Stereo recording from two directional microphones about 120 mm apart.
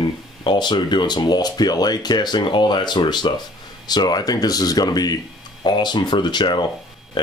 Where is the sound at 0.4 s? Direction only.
40° left (ahead or behind).